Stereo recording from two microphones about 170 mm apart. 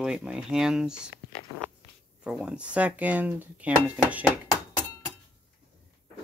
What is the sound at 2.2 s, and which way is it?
Speech, 5° right (ahead or behind).